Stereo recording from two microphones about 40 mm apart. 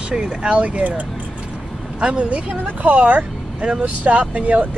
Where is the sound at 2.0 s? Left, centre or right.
Right.